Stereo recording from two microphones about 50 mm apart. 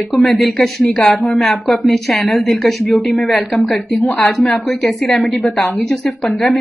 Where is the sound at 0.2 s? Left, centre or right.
Centre.